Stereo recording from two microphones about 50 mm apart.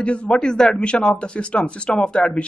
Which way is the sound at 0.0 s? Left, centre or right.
Left.